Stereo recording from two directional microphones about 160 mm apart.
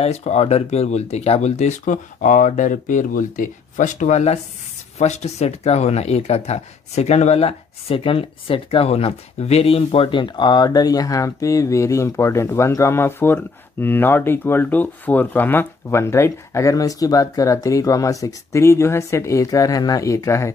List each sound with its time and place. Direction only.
0.0 s speech: 40° left (ahead or behind); by 20.5 s 20° left (ahead or behind)